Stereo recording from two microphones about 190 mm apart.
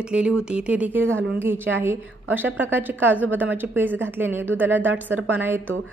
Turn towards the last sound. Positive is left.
turn(degrees=-10)  # may be behind; listen again after turning